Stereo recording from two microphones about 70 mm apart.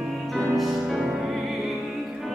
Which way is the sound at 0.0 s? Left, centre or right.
Centre.